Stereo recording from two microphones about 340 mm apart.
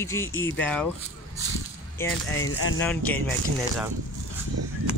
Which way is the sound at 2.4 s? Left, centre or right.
Left.